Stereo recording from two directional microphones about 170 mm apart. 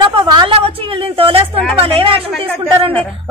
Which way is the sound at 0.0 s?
30° right (ahead or behind).